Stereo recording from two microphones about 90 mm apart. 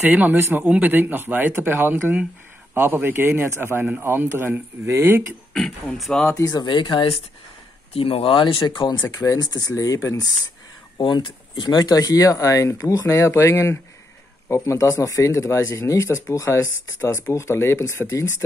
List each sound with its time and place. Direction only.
0.0 s speech: 15° right (ahead or behind)
5.9 s speech: centre (ahead or behind)
6.3 s speech: 45° left (ahead or behind); by 7.2 s 65° left (ahead or behind)
7.9 s speech: 90° left; by 8.9 s 55° left (ahead or behind)
9.0 s speech: 40° left (ahead or behind)
11.0 s speech: 60° left (ahead or behind); by 18.2 s 35° left (ahead or behind)